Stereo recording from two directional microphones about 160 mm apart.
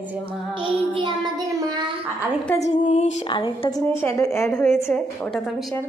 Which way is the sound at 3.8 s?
15° left (ahead or behind).